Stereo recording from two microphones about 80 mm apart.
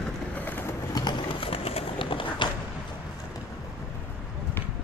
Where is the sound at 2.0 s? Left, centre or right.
Left.